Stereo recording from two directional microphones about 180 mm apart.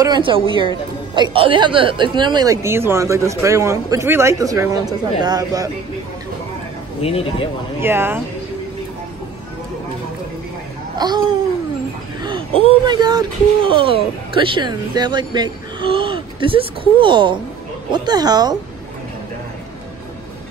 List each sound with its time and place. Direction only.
0.0 s speech: 25° right (ahead or behind)
7.0 s speech: 35° left (ahead or behind)
7.8 s speech: 10° right (ahead or behind)
11.0 s speech: 20° right (ahead or behind)